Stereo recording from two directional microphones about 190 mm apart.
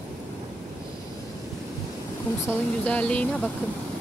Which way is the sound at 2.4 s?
5° left (ahead or behind).